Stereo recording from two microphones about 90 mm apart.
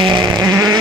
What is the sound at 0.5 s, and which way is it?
Vehicle, 45° right (ahead or behind).